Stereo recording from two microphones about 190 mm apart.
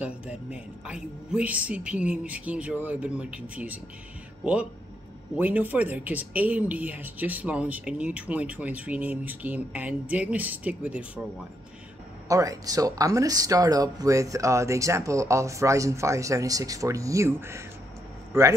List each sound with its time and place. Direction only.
0.0 s speech: 5° right (ahead or behind)
5.4 s speech: 10° right (ahead or behind)
12.3 s speech: 15° right (ahead or behind)